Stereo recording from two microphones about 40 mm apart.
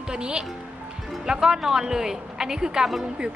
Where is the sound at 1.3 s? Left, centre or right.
Centre.